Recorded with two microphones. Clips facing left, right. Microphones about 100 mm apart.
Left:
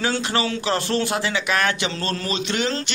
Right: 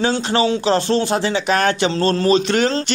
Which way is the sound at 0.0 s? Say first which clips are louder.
Right 5 dB; 25° right (ahead or behind).